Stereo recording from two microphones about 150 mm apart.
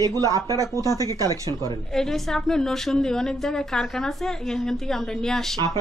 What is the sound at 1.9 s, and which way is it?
A woman's voice, 5° left (ahead or behind).